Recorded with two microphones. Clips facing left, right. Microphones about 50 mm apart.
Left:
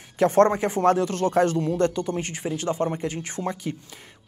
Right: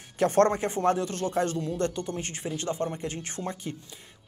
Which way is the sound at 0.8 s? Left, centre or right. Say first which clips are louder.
Left 6 dB; left.